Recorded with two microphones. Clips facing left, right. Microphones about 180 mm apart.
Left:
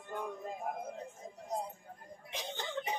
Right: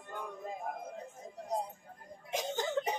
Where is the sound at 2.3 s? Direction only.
45° right (ahead or behind).